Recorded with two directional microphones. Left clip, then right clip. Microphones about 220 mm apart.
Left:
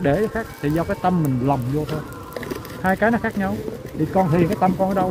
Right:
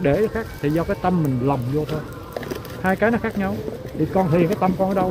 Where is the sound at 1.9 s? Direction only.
40° left (ahead or behind).